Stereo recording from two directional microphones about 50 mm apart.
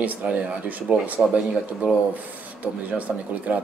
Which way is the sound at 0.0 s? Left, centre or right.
Right.